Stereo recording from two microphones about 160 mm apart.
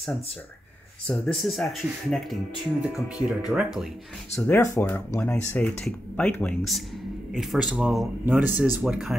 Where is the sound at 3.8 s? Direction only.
Centre (ahead or behind).